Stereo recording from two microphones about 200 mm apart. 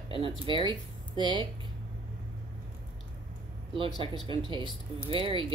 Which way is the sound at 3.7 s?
25° right (ahead or behind).